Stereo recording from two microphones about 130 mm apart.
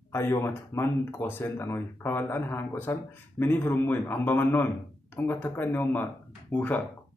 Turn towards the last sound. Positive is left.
turn(degrees=15)  # may be behind; listen again after turning